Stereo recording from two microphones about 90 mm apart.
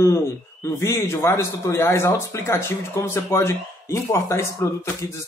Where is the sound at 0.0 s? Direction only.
35° left (ahead or behind).